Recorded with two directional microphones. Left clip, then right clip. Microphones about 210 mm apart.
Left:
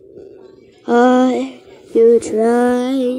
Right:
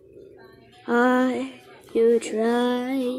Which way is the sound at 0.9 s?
5° left (ahead or behind).